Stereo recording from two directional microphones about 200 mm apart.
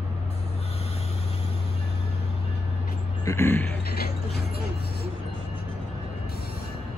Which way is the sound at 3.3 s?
10° left (ahead or behind).